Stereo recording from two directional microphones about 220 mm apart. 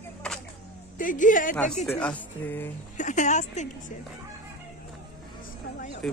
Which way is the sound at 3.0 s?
35° left (ahead or behind).